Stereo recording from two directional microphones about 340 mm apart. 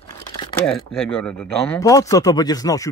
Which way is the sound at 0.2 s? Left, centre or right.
Centre.